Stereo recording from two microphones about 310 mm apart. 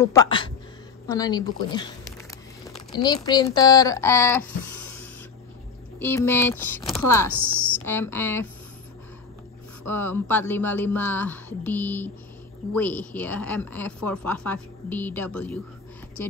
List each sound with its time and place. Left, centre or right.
0.0 s speech: centre
3.0 s speech: centre
5.9 s speech: centre
7.2 s speech: left
7.8 s speech: centre
9.8 s speech: centre